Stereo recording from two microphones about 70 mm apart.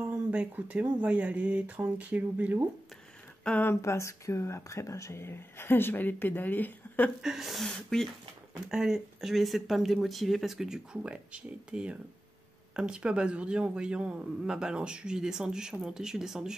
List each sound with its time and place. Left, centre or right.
0.5 s speech: right
3.4 s speech: centre
3.8 s speech: left
7.2 s speech: centre
8.5 s speech: centre